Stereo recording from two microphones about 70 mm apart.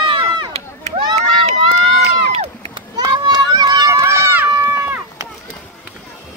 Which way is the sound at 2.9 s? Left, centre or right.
Right.